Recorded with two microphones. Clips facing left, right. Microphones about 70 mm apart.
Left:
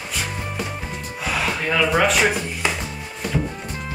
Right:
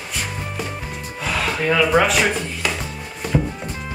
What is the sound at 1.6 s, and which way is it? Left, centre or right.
Speech, centre.